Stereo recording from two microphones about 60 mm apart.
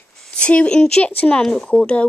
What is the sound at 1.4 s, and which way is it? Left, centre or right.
Speech, centre.